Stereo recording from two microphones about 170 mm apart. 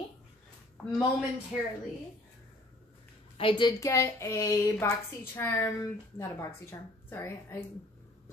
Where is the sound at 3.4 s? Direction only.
30° left (ahead or behind).